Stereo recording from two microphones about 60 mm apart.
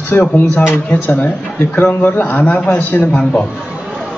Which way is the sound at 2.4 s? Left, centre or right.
Left.